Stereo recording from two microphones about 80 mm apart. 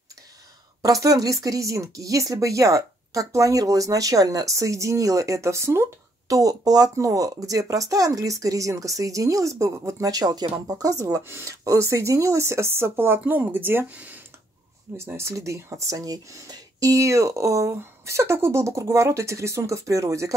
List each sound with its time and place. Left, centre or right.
0.8 s speech: right
15.1 s speech: right